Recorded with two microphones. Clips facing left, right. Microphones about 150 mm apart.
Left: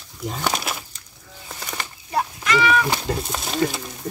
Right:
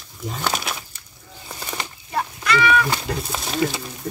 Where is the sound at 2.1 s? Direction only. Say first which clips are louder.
Left 1 dB; 15° left (ahead or behind).